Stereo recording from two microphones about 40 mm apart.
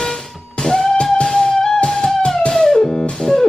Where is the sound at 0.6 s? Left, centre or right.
Centre.